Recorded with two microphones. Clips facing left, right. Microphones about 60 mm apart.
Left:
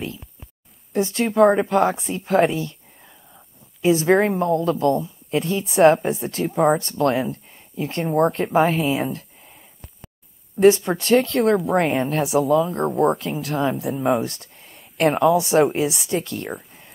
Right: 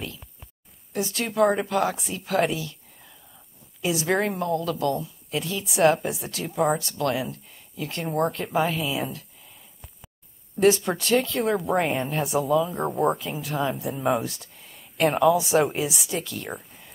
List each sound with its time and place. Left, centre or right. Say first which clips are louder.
1.1 s a woman's voice: left 6 dB; left
3.8 s a woman's voice: left 7 dB; left
10.6 s speech: left 5 dB; centre
14.2 s speech: left 5 dB; left
14.6 s a sound: left 3 dB; centre
15.2 s speech: left 3 dB; centre